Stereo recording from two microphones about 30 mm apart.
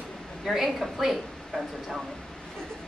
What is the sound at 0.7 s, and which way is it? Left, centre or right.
A woman's voice, centre.